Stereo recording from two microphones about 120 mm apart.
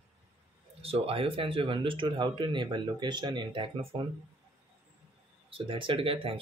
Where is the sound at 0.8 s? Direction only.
55° right (ahead or behind).